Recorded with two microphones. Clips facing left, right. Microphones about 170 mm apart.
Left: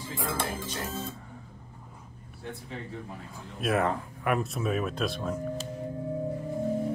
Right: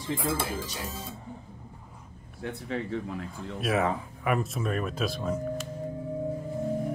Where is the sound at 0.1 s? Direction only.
5° right (ahead or behind).